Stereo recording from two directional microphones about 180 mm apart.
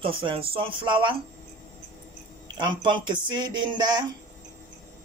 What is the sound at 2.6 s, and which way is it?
Speech, 25° right (ahead or behind).